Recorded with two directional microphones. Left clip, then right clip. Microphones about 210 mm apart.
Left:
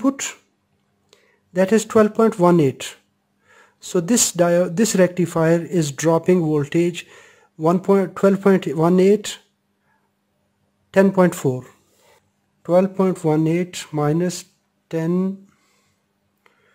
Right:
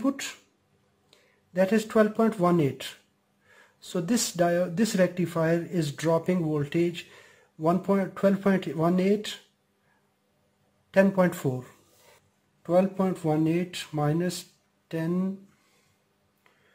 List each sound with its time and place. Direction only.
0.0 s speech: 40° left (ahead or behind)
10.9 s speech: 40° left (ahead or behind)